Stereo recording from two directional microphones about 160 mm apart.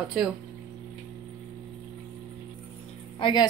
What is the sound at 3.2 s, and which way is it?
Speech, 25° left (ahead or behind).